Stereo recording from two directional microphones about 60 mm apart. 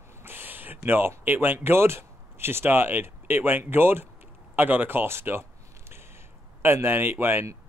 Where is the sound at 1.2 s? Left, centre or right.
Right.